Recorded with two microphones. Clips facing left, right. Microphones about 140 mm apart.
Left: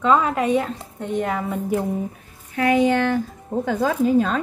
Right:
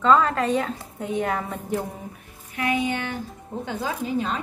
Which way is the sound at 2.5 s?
45° left (ahead or behind).